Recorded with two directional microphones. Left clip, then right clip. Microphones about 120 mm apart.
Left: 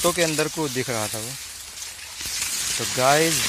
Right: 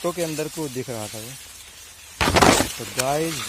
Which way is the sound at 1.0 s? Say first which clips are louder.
Left 5 dB; 15° left (ahead or behind).